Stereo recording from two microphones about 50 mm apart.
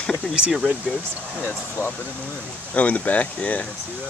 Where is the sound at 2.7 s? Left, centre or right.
Left.